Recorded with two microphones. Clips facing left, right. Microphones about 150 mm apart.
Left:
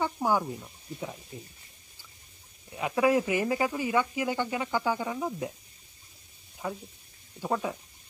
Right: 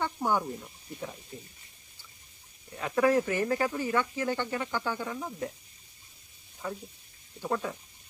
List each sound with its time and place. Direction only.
0.0 s speech: 5° left (ahead or behind)
2.8 s speech: 10° left (ahead or behind)
7.4 s speech: 15° left (ahead or behind)